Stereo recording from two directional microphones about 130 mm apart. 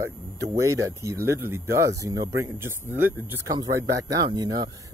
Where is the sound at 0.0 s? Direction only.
25° right (ahead or behind).